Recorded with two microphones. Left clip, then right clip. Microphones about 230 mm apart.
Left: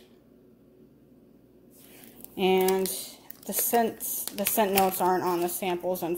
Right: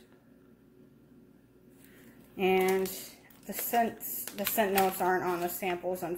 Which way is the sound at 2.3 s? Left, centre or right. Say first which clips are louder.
Left 3 dB; left.